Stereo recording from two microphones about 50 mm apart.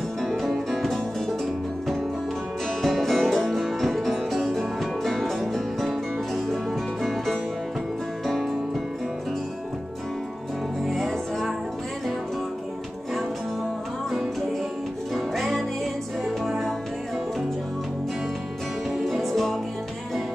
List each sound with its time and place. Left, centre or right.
0.2 s music: centre
2.8 s music: centre
10.8 s music: centre
15.1 s music: centre
18.9 s music: centre